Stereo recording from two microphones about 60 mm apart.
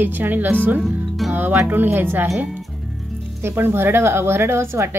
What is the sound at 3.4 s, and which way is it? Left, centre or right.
A woman's voice, right.